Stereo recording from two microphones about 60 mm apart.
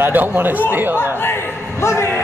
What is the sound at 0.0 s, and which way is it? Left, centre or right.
Speech, right.